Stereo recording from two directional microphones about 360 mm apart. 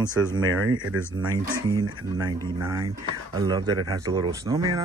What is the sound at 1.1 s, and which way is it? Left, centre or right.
Speech, centre.